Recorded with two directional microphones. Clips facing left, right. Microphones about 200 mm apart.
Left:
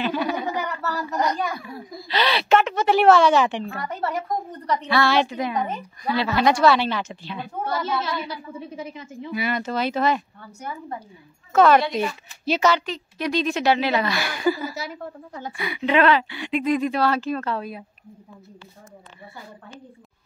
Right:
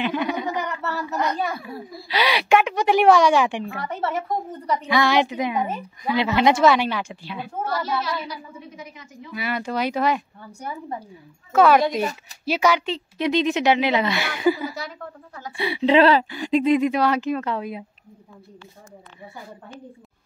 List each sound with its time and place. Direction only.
0.0 s a sound: 20° right (ahead or behind)
1.5 s a woman's voice: 5° right (ahead or behind)
3.7 s a woman's voice: centre (ahead or behind)
4.9 s a woman's voice: 15° right (ahead or behind)
7.6 s a woman's voice: 25° left (ahead or behind)
9.5 s a woman's voice: 10° right (ahead or behind)
12.8 s a woman's voice: 25° right (ahead or behind)
15.5 s speech: 30° right (ahead or behind)
16.6 s a woman's voice: 20° right (ahead or behind)